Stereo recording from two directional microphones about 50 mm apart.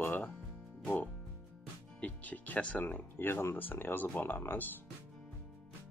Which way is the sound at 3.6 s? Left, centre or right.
Left.